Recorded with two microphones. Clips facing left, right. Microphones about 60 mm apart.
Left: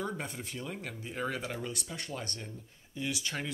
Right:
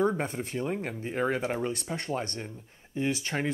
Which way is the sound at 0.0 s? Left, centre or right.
Right.